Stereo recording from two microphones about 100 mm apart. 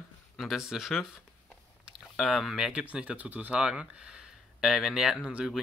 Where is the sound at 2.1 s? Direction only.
Centre (ahead or behind).